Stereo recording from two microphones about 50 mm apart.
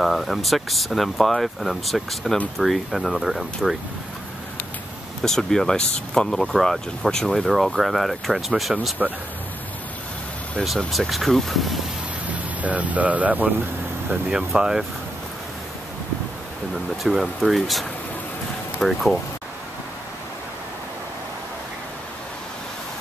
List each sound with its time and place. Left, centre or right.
0.0 s speech: centre
5.2 s speech: centre
7.4 s speech: centre
10.9 s speech: centre
12.6 s speech: right
14.6 s speech: centre
17.0 s speech: centre